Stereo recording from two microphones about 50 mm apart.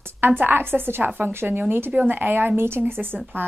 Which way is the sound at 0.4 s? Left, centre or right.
Right.